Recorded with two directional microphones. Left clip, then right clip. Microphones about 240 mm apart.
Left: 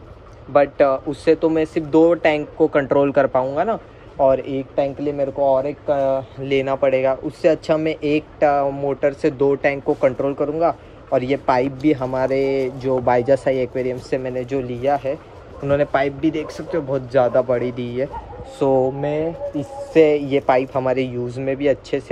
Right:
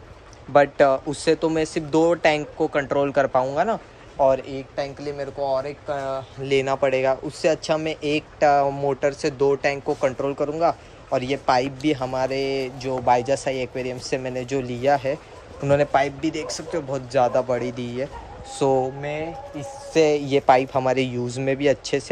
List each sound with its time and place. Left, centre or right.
0.5 s a man's voice: right
19.9 s a man's voice: centre